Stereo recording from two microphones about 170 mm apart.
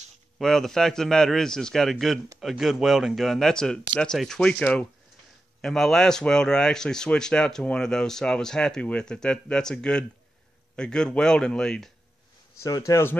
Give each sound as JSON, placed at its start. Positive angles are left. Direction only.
{"t": 0.4, "sound": "speech", "side_deg": 0}
{"t": 12.5, "sound": "a man's voice", "side_deg": 20}